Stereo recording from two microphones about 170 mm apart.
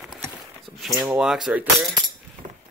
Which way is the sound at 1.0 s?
5° right (ahead or behind).